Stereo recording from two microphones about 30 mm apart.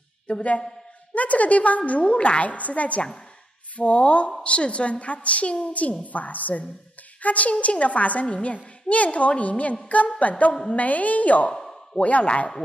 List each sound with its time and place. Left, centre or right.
0.3 s a woman's voice: left
1.1 s a woman's voice: left
2.1 s a woman's voice: left
2.5 s a woman's voice: left
5.7 s a woman's voice: left
7.5 s a woman's voice: left
11.5 s a sound: centre
12.0 s a woman's voice: left